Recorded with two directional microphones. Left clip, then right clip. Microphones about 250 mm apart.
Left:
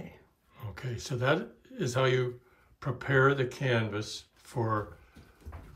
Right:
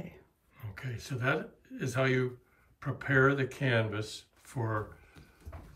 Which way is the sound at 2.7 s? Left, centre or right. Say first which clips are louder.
Left 1 dB; centre.